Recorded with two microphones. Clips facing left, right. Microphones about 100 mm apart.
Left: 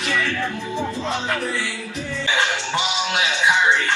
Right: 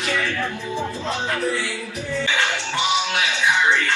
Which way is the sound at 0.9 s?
20° left (ahead or behind).